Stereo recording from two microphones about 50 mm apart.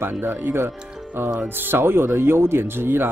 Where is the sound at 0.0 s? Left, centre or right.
Right.